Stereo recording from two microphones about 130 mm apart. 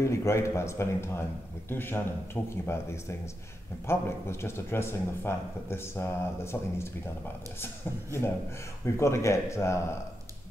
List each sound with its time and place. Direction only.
0.0 s a man's voice: 20° left (ahead or behind)